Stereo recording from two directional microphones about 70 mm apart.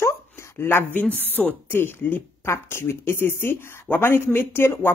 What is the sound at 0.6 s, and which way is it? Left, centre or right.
Speech, left.